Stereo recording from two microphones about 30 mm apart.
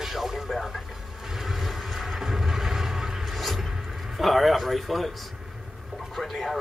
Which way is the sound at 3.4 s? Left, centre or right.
Centre.